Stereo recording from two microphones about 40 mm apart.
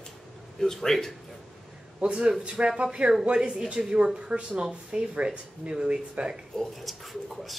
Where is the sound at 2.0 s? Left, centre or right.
Right.